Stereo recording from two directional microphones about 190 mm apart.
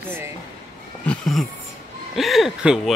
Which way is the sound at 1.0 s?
Centre (ahead or behind).